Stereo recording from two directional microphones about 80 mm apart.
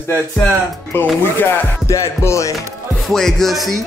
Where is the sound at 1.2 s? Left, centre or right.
Left.